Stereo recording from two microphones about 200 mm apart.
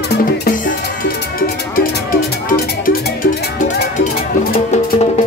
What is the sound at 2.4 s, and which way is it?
Music, 45° left (ahead or behind).